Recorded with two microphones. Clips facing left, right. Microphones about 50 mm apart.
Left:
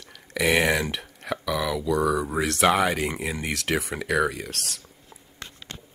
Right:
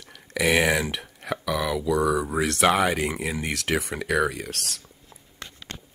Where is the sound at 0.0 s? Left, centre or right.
Centre.